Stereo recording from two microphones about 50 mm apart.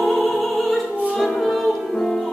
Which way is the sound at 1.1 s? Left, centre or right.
Centre.